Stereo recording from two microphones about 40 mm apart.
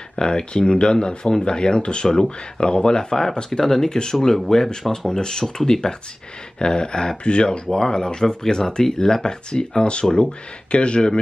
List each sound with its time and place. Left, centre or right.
0.1 s speech: left